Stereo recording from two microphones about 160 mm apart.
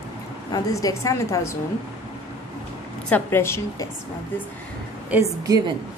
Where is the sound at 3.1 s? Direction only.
15° left (ahead or behind).